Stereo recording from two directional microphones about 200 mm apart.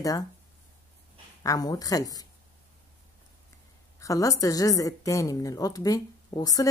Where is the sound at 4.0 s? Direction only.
15° left (ahead or behind).